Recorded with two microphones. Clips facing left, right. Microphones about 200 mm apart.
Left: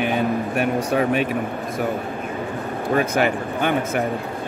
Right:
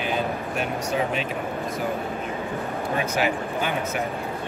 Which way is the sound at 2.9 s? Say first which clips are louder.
Left 6 dB; 50° left (ahead or behind).